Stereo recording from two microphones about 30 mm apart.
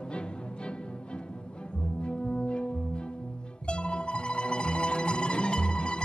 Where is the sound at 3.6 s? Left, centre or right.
Left.